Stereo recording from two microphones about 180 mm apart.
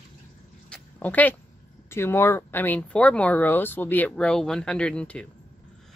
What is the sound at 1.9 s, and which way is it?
Speech, 15° left (ahead or behind).